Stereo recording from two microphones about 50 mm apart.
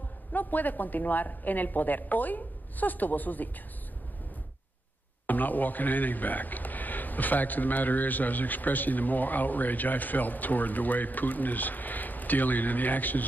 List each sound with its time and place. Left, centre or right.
0.3 s a man's voice: left
5.2 s a man's voice: left